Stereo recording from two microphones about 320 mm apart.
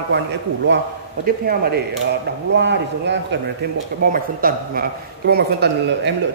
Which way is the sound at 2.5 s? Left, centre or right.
Right.